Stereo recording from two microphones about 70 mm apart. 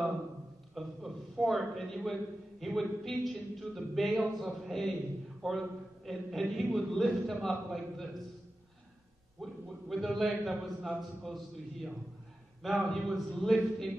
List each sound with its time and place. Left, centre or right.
0.7 s a sound: centre
2.6 s a man's voice: centre
9.4 s a man's voice: centre
12.6 s a man's voice: centre